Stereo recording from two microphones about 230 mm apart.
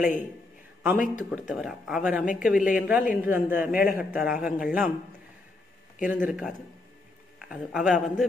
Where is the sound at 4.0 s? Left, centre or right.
Centre.